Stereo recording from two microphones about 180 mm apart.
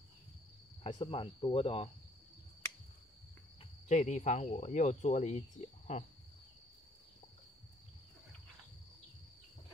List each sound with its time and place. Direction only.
0.8 s speech: 30° left (ahead or behind)
3.9 s speech: 40° left (ahead or behind)